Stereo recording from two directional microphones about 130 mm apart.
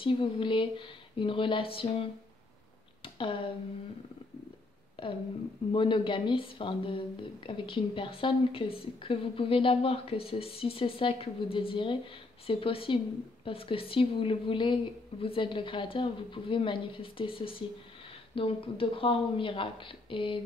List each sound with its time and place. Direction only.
0.0 s a woman's voice: 40° left (ahead or behind)
3.2 s speech: 45° left (ahead or behind)
5.0 s a woman's voice: 45° left (ahead or behind)